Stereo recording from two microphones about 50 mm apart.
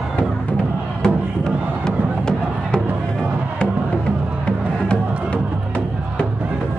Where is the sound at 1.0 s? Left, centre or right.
Centre.